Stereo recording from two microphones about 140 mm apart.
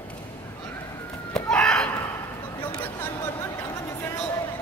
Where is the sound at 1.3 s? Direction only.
5° left (ahead or behind).